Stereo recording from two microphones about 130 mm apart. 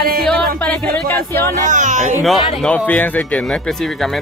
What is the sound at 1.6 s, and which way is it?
Speech, 70° right (ahead or behind).